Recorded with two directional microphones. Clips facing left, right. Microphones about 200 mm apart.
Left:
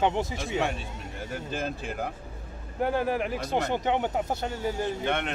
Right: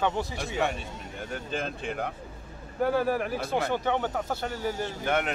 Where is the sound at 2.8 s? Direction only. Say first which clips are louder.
Right 1 dB; 20° left (ahead or behind).